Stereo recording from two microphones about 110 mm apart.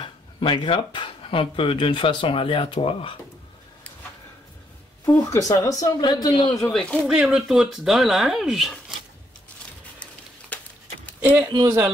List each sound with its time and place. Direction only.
0.0 s speech: 50° left (ahead or behind)
5.2 s speech: 35° left (ahead or behind)
6.6 s speech: 5° left (ahead or behind)
10.5 s a sound: 15° left (ahead or behind)
11.4 s speech: 40° right (ahead or behind)